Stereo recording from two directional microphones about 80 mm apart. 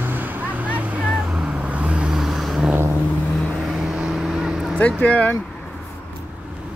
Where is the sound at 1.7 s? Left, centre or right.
Centre.